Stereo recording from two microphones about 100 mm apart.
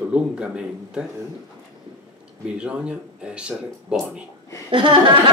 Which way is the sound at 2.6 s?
10° right (ahead or behind).